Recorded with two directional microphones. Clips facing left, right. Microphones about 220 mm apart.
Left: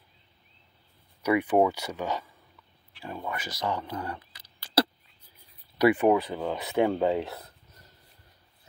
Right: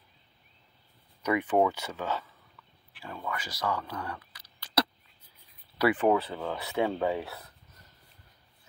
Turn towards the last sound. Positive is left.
turn(degrees=20)  # may be behind; listen again after turning